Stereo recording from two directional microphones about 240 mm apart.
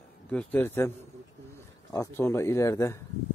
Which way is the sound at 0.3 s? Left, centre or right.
Centre.